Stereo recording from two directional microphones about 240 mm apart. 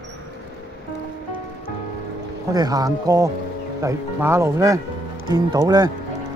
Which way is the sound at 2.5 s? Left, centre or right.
Centre.